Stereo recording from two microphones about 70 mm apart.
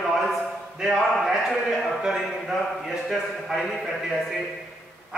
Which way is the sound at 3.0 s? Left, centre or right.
Centre.